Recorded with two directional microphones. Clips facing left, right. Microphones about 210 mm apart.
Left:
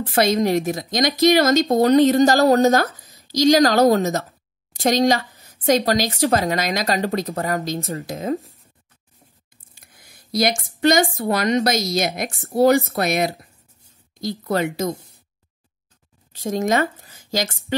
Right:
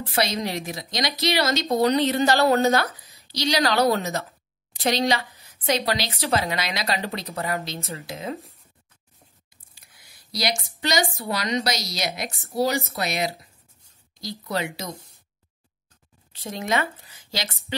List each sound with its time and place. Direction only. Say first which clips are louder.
0.1 s a woman's voice: left 8 dB; 50° left (ahead or behind)
9.8 s a woman's voice: left 5 dB; 50° left (ahead or behind)
16.3 s speech: left 6 dB; 45° left (ahead or behind)